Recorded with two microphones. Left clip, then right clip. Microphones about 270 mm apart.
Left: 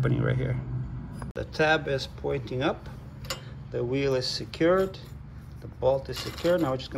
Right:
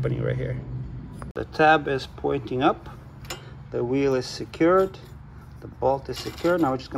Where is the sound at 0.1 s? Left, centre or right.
Left.